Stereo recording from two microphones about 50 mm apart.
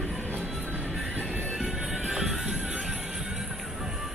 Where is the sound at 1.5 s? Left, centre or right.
Centre.